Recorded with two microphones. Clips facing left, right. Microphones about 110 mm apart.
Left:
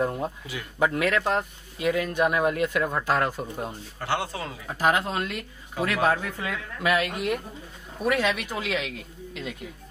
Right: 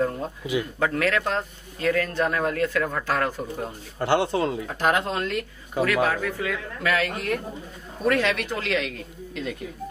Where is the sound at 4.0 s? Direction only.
30° right (ahead or behind).